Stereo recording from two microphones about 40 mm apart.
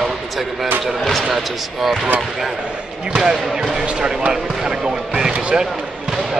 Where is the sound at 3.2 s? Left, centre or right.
Centre.